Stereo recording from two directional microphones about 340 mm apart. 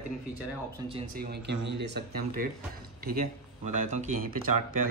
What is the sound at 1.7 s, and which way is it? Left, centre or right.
Speech, right.